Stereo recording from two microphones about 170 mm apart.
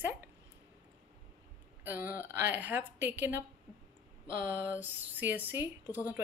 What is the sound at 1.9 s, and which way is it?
A woman's voice, 15° right (ahead or behind).